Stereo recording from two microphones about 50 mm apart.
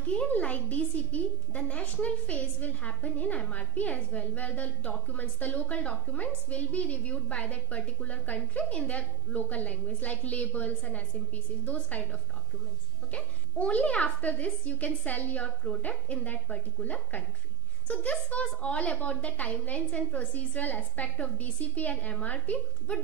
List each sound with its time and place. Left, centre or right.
0.3 s a woman's voice: left
18.3 s a woman's voice: left